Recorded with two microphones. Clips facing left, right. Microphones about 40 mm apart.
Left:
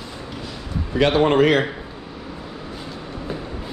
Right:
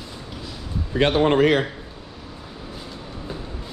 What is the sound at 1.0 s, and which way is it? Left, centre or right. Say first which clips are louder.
Speech: left 1 dB; left.